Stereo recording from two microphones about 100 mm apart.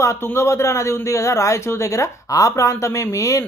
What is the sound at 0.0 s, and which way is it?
A man's voice, 25° left (ahead or behind).